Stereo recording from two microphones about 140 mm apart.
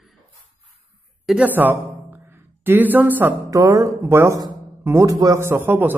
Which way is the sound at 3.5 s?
25° right (ahead or behind).